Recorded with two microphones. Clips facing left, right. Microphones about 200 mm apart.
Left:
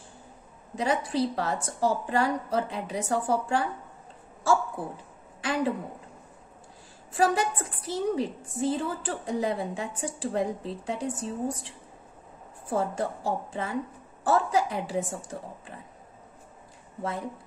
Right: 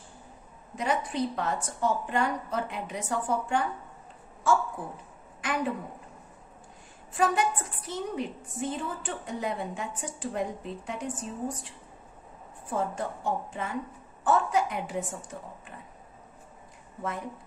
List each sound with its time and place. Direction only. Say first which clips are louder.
0.7 s a woman's voice: left 2 dB; 35° left (ahead or behind)
5.4 s a woman's voice: left 3 dB; 30° left (ahead or behind)
7.2 s a woman's voice: left 1 dB; 35° left (ahead or behind)